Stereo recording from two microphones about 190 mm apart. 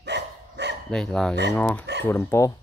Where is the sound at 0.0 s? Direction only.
65° right (ahead or behind).